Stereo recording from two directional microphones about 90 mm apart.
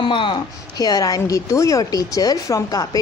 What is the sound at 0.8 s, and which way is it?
Speech, 45° left (ahead or behind).